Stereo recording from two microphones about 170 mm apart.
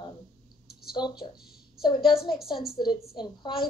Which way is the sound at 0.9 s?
25° left (ahead or behind).